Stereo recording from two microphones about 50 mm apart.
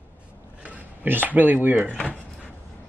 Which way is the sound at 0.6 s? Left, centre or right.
Right.